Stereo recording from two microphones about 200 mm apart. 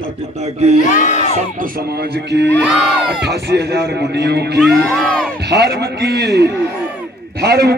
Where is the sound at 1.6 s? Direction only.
50° right (ahead or behind).